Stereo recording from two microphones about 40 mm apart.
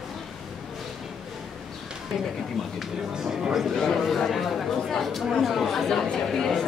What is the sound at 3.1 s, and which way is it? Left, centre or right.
Speech, centre.